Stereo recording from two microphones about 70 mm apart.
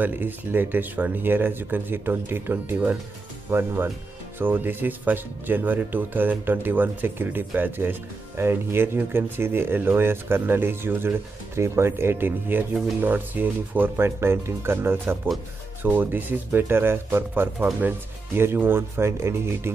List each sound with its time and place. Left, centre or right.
0.0 s speech: right